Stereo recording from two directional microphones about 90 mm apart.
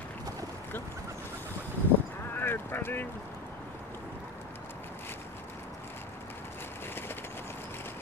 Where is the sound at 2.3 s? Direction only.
25° left (ahead or behind).